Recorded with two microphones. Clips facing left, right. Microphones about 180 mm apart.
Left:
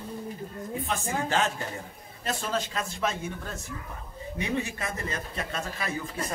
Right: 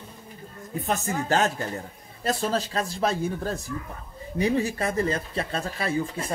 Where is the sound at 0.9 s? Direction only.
40° right (ahead or behind).